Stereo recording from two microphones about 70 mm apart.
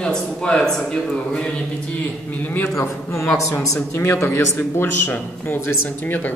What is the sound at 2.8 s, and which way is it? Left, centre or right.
A man's voice, left.